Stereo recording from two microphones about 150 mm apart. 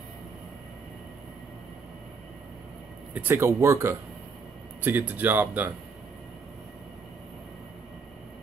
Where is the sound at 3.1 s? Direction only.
10° right (ahead or behind).